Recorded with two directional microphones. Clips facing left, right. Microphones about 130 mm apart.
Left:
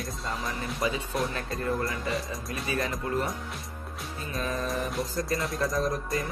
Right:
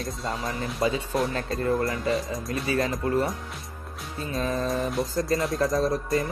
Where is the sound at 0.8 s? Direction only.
25° right (ahead or behind).